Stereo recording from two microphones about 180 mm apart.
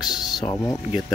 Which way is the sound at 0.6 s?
15° left (ahead or behind).